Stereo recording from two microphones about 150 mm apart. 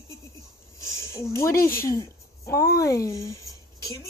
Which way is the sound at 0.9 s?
20° left (ahead or behind).